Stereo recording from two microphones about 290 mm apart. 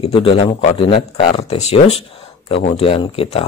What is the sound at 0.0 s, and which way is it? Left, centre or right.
Speech, centre.